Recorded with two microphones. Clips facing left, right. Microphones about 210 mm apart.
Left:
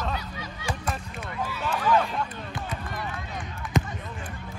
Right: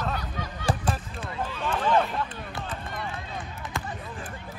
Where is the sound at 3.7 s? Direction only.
20° left (ahead or behind).